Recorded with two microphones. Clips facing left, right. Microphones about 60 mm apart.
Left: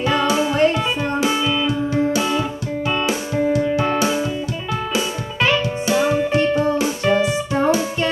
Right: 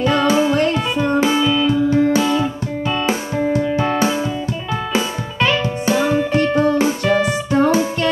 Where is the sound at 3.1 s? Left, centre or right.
Right.